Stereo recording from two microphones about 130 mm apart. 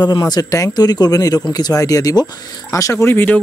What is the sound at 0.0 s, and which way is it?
Speech, 35° left (ahead or behind).